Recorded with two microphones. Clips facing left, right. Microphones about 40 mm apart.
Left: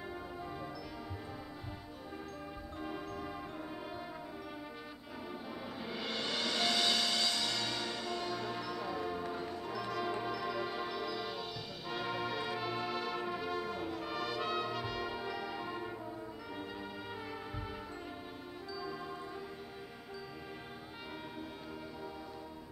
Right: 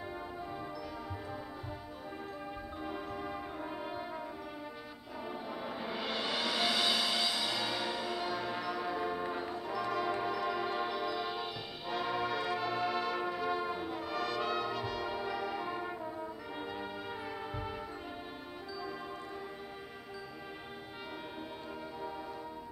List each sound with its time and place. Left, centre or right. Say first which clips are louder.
2.8 s music: right 1 dB; centre
5.8 s music: right 2 dB; centre
12.0 s brass instrument: right 3 dB; centre
13.5 s brass instrument: right 3 dB; centre
14.0 s brass instrument: right 4 dB; centre